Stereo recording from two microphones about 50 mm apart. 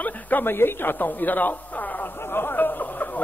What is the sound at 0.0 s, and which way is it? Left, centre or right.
Speech, left.